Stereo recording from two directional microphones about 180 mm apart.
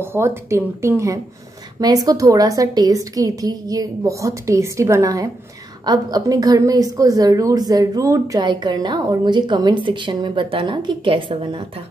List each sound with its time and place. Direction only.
0.0 s a woman's voice: 10° right (ahead or behind); by 11.6 s 30° right (ahead or behind)